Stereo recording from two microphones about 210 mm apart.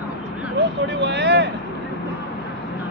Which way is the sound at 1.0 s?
55° right (ahead or behind).